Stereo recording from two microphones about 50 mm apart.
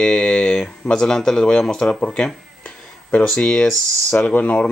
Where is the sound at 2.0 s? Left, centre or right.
Left.